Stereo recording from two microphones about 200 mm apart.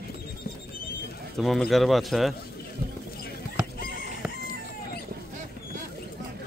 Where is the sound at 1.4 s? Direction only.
Centre (ahead or behind).